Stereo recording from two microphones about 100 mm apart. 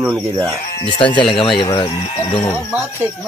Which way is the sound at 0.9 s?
55° left (ahead or behind).